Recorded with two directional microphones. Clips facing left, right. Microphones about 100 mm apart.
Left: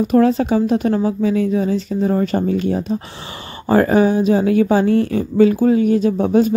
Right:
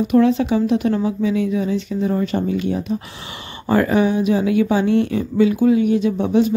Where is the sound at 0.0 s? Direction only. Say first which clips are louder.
Left 1 dB; 40° left (ahead or behind).